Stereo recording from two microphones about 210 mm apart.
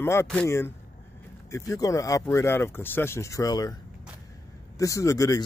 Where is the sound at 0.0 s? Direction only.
10° left (ahead or behind).